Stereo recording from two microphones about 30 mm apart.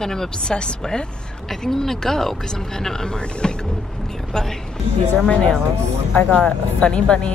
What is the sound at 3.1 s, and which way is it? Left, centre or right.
Speech, left.